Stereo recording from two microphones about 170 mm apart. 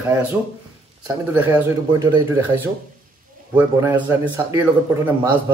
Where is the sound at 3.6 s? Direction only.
15° right (ahead or behind).